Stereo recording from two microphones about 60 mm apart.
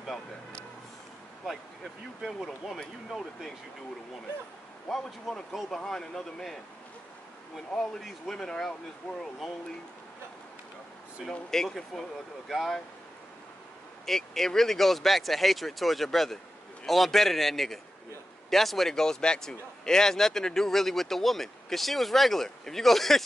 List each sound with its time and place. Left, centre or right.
0.1 s speech: centre
2.4 s speech: centre
4.8 s speech: centre
11.5 s speech: centre
14.0 s speech: centre